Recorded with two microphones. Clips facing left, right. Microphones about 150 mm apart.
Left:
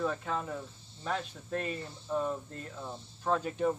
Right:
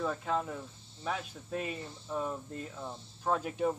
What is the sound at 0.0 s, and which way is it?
Speech, 5° right (ahead or behind).